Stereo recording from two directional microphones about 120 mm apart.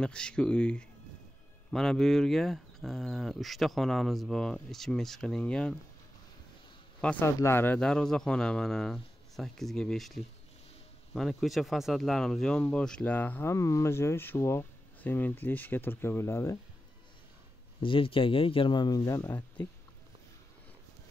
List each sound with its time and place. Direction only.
0.0 s a man's voice: 10° left (ahead or behind)
7.0 s a man's voice: 10° left (ahead or behind)
7.2 s a man's voice: 25° left (ahead or behind)
17.8 s speech: 45° left (ahead or behind); by 19.4 s 25° left (ahead or behind)